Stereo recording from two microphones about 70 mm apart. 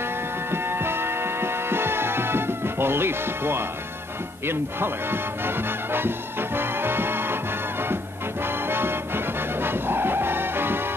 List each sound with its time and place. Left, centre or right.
0.0 s music: right